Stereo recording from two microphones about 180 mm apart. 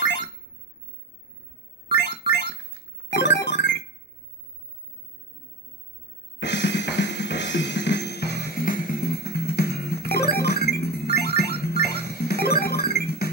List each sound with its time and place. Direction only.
0.0 s a sound: 80° left
1.9 s synthesizer: 70° left (ahead or behind)
3.1 s music: 70° left (ahead or behind)
6.4 s drum kit: 75° left (ahead or behind); by 13.3 s 60° left (ahead or behind)